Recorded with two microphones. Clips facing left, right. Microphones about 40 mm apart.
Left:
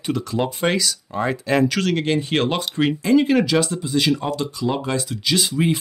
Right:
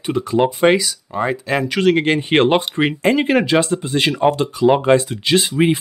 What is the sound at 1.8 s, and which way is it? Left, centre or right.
Speech, right.